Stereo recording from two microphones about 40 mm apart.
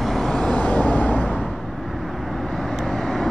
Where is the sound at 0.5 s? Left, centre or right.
Left.